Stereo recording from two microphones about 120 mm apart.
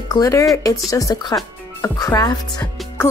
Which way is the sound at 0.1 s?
30° left (ahead or behind).